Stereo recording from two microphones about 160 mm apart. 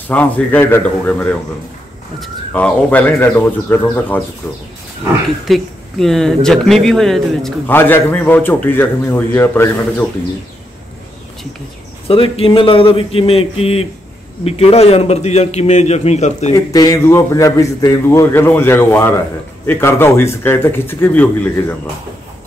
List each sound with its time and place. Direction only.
0.1 s a man's voice: 10° left (ahead or behind)
5.5 s speech: centre (ahead or behind)
7.7 s a man's voice: 15° left (ahead or behind)
12.1 s a man's voice: 35° left (ahead or behind)
16.5 s a man's voice: 20° left (ahead or behind)